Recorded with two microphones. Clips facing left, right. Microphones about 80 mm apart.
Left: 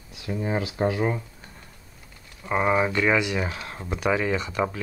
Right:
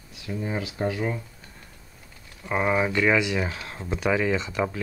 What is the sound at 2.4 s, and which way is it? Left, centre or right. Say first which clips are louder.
Speech: left 1 dB; centre.